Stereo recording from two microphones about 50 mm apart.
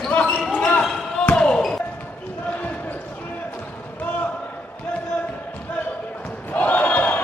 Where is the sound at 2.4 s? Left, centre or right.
Left.